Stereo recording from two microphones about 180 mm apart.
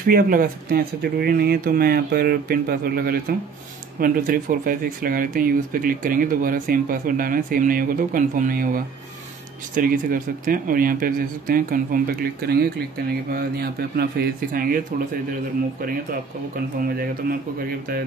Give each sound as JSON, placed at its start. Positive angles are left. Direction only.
{"t": 0.0, "sound": "speech", "side_deg": -50}
{"t": 16.8, "sound": "speech", "side_deg": -55}